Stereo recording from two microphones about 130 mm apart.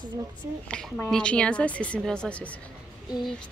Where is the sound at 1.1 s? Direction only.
5° left (ahead or behind).